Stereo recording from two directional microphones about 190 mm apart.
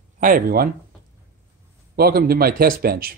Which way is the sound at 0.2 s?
50° right (ahead or behind).